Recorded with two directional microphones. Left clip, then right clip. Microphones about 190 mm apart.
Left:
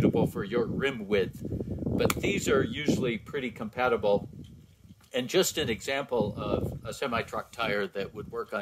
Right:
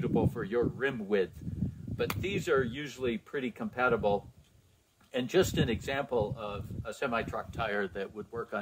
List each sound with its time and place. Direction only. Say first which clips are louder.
0.0 s speech: left 4 dB; 25° left (ahead or behind)